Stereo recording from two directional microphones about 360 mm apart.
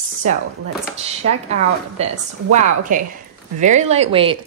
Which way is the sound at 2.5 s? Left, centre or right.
Right.